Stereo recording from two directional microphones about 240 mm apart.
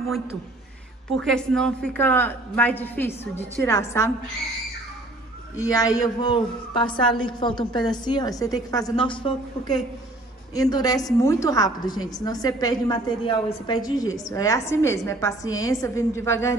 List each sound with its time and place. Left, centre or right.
1.1 s a woman's voice: centre
5.6 s a woman's voice: centre